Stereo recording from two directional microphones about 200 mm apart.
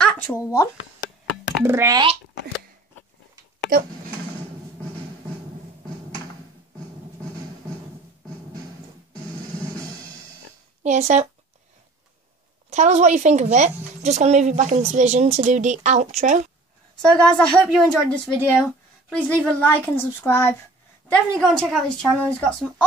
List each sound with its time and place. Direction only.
0.0 s speech: 15° left (ahead or behind)
1.6 s a child's voice: 10° right (ahead or behind)
3.7 s speech: 45° right (ahead or behind)
10.8 s speech: 35° right (ahead or behind)
12.6 s a woman's voice: 35° right (ahead or behind)
16.9 s a woman's voice: 5° left (ahead or behind)